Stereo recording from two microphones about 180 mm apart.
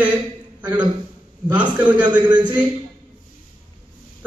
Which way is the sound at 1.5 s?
10° right (ahead or behind).